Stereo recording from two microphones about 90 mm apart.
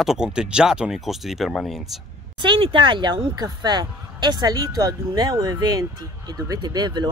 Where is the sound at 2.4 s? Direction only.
70° right (ahead or behind).